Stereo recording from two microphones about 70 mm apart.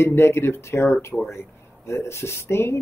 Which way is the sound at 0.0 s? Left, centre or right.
Left.